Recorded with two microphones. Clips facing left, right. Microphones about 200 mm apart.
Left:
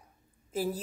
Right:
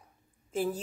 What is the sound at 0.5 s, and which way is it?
Speech, 5° left (ahead or behind).